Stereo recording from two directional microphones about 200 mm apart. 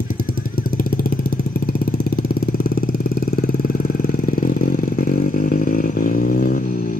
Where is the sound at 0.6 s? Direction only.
45° left (ahead or behind).